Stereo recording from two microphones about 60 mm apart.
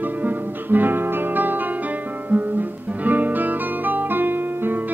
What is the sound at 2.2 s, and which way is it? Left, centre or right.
Music, right.